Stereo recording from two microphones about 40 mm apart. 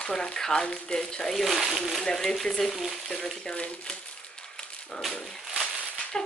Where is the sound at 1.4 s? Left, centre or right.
Centre.